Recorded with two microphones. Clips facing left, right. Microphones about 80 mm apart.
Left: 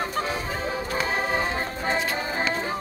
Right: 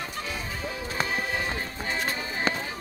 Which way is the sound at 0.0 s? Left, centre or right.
Left.